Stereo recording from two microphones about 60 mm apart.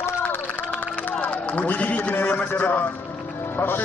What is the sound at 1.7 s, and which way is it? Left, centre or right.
A man's voice, left.